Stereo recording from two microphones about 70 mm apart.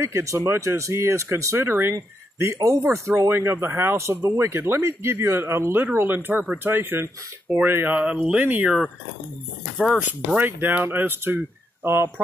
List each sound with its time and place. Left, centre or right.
0.0 s speech: right
10.3 s speech: right